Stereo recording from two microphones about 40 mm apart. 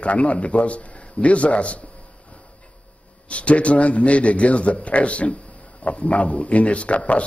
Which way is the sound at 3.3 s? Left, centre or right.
Left.